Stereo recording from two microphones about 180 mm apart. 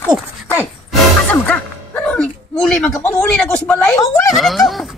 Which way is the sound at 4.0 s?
15° left (ahead or behind).